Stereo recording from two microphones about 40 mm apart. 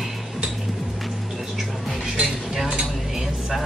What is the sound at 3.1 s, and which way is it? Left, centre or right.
Dishes, centre.